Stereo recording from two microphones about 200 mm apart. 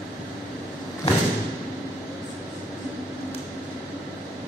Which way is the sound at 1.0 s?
30° left (ahead or behind).